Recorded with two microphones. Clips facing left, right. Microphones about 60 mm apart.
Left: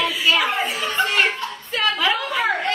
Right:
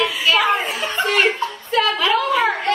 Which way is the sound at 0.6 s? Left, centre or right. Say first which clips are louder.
Even; right.